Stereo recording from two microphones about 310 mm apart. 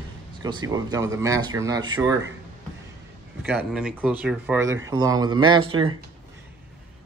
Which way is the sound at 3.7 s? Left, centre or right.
Centre.